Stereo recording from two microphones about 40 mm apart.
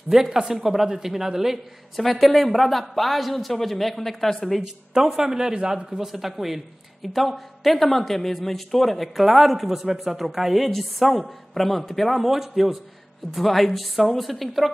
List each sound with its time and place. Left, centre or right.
0.1 s speech: centre
2.0 s speech: centre
4.5 s speech: centre